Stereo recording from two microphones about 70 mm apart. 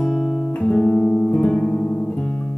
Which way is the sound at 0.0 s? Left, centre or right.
Centre.